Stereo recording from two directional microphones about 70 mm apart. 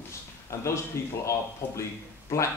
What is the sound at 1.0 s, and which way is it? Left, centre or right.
Speech, left.